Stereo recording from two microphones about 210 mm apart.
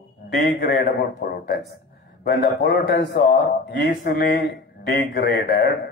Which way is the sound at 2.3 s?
50° left (ahead or behind).